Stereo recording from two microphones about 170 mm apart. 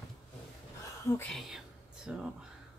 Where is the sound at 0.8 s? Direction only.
15° left (ahead or behind).